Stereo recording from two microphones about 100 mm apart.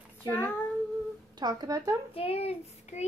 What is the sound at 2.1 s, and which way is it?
Speech, 75° left (ahead or behind).